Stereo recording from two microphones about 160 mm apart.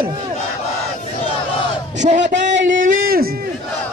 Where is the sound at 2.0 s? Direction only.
50° right (ahead or behind); by 3.4 s 70° right (ahead or behind).